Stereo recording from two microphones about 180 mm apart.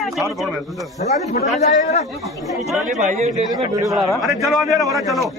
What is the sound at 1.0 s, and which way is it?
A man's voice, 40° left (ahead or behind).